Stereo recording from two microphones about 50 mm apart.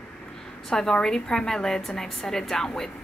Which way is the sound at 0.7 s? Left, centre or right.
Centre.